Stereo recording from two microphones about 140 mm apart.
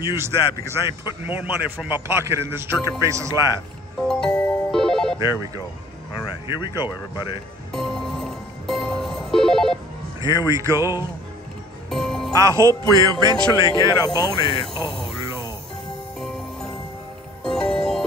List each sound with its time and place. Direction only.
0.4 s speech: 35° left (ahead or behind)
0.7 s a man's voice: 15° right (ahead or behind)
3.1 s music: 20° right (ahead or behind)
4.1 s music: 5° left (ahead or behind)
5.2 s speech: 30° left (ahead or behind)
7.7 s music: 5° left (ahead or behind)
10.2 s speech: 30° left (ahead or behind)
10.8 s music: 20° right (ahead or behind)
11.9 s music: 5° left (ahead or behind)
12.4 s music: 20° right (ahead or behind)
13.5 s speech: 25° left (ahead or behind)
16.2 s music: 5° left (ahead or behind)